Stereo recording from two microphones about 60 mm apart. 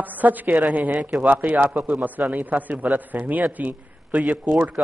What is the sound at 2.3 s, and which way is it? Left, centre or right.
A man's voice, right.